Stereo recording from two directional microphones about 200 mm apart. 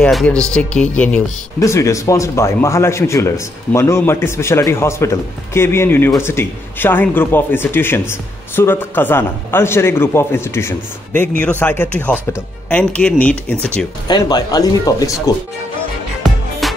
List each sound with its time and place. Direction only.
0.0 s speech: 5° left (ahead or behind)
14.0 s speech: 20° left (ahead or behind)
16.2 s music: centre (ahead or behind)